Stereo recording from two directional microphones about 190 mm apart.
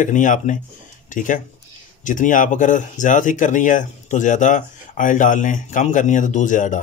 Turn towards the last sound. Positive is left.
turn(degrees=40)  # may be behind; listen again after turning